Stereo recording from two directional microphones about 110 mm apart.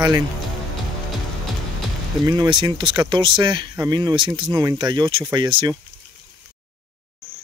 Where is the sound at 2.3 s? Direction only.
40° right (ahead or behind).